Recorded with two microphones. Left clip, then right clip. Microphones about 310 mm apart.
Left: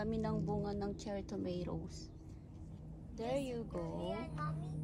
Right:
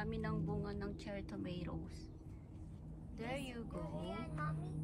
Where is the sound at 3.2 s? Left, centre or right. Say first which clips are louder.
Left 6 dB; centre.